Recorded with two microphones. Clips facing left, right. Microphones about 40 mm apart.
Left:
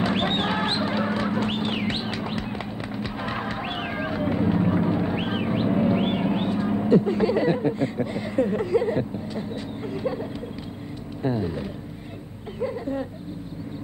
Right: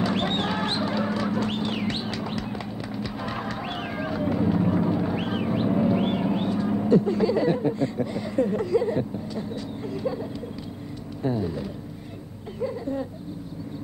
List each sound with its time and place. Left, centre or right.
0.0 s chicken: left
11.2 s speech: left